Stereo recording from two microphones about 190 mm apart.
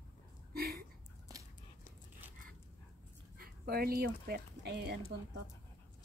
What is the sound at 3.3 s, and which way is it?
Speech, 55° right (ahead or behind).